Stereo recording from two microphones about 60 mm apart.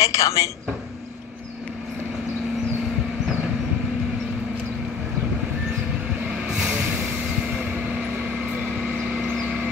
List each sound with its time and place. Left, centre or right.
0.0 s a woman's voice: left
6.2 s vehicle: centre